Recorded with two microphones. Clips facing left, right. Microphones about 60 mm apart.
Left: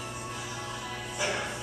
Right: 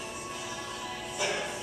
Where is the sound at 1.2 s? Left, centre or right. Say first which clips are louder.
Even; centre.